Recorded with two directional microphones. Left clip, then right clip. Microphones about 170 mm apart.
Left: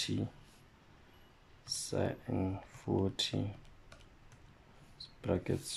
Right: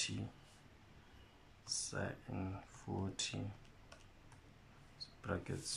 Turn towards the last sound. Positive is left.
turn(degrees=25)  # may be behind; listen again after turning